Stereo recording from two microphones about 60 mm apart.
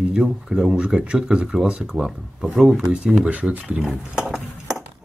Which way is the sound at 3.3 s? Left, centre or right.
Right.